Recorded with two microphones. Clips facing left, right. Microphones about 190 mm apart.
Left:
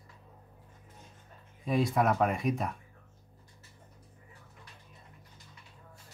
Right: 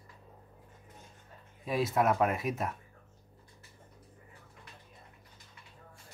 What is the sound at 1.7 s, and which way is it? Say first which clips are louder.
Speech: left 1 dB; centre (ahead or behind).